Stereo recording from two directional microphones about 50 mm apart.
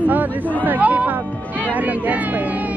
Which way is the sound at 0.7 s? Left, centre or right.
Right.